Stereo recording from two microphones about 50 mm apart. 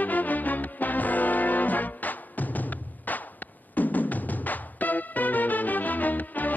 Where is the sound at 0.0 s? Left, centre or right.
Left.